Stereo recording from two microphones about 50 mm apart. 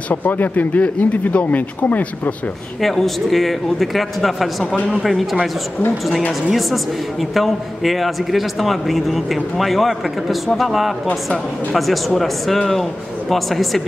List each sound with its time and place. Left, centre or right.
0.1 s speech: left
2.8 s a man's voice: centre
6.5 s a man's voice: centre